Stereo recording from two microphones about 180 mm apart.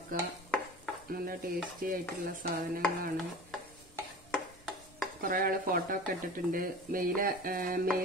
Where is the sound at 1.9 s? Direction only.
55° right (ahead or behind).